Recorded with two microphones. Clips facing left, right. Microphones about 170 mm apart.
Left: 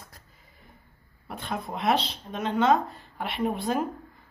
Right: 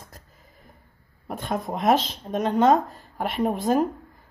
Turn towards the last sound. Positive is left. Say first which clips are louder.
# right 5 dB
turn(degrees=-45)  # may be behind; listen again after turning